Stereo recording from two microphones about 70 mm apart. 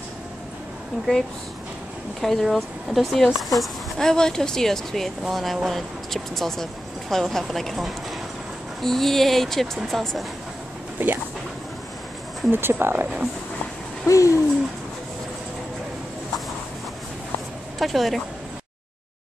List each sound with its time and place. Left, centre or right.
2.2 s speech: centre
11.0 s speech: right
12.4 s speech: right
14.0 s a sound: left
17.7 s a woman's voice: centre